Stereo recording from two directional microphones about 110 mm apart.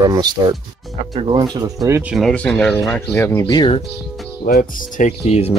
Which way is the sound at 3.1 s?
25° left (ahead or behind).